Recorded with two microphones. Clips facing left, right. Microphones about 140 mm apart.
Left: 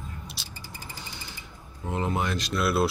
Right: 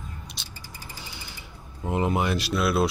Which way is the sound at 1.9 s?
15° right (ahead or behind).